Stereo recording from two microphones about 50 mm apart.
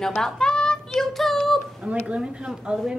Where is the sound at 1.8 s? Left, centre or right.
Right.